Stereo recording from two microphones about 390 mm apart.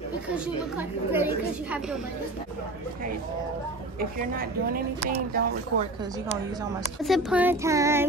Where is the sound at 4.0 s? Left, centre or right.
Right.